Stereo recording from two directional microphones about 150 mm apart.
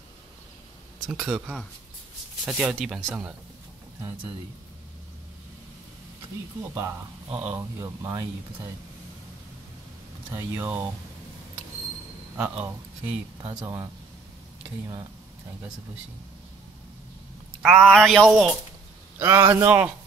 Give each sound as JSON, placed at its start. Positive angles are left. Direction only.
{"t": 1.0, "sound": "a man's voice", "side_deg": -5}
{"t": 7.2, "sound": "a man's voice", "side_deg": -10}
{"t": 7.8, "sound": "speech", "side_deg": -20}
{"t": 10.3, "sound": "a man's voice", "side_deg": -15}
{"t": 12.4, "sound": "a man's voice", "side_deg": -5}
{"t": 13.4, "sound": "speech", "side_deg": -25}
{"t": 17.6, "sound": "speech", "side_deg": -10}
{"t": 19.1, "sound": "a man's voice", "side_deg": -15}